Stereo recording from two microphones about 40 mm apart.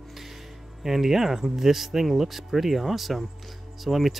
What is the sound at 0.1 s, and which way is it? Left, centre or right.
Music, centre.